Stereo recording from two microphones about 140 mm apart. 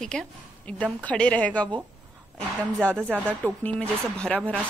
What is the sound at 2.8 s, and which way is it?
Speech, 5° left (ahead or behind).